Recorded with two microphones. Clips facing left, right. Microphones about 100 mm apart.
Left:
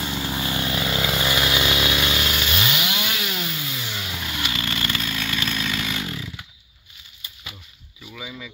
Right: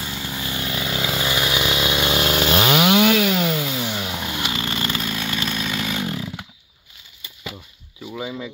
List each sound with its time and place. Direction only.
0.0 s vehicle: 5° left (ahead or behind)
0.4 s vehicle: 20° left (ahead or behind)
0.7 s chainsaw: centre (ahead or behind); by 2.1 s 20° right (ahead or behind)
2.1 s chainsaw: 40° right (ahead or behind)
2.5 s chainsaw: 55° right (ahead or behind)
3.9 s chainsaw: 30° right (ahead or behind)
5.9 s chainsaw: 30° right (ahead or behind)
8.0 s a sound: 25° right (ahead or behind)